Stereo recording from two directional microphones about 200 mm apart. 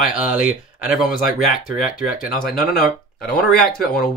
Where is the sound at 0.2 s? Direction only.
5° right (ahead or behind).